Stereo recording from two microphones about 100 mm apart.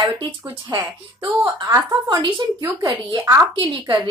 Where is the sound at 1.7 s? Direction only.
40° right (ahead or behind).